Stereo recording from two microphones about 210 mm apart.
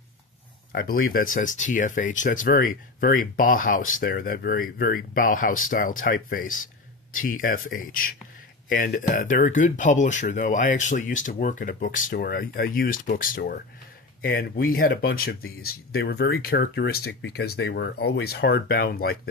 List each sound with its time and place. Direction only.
0.7 s speech: 45° left (ahead or behind)